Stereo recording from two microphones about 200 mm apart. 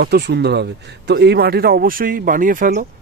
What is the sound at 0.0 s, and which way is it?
A man's voice, 55° right (ahead or behind).